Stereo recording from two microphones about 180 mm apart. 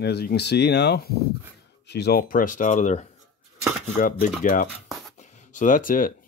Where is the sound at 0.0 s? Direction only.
65° left (ahead or behind).